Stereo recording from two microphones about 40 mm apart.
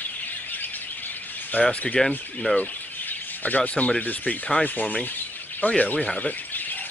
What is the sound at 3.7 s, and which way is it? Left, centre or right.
Speech, left.